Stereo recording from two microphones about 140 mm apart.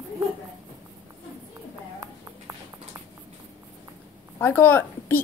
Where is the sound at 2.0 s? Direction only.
20° right (ahead or behind).